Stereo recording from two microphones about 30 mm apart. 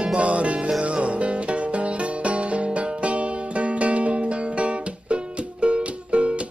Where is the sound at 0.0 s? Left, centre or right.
Right.